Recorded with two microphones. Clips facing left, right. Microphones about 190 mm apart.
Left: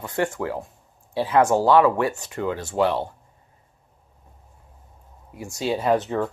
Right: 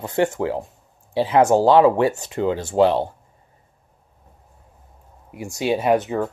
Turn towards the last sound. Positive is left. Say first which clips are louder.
# right 2 dB
turn(degrees=-10)  # may be behind; listen again after turning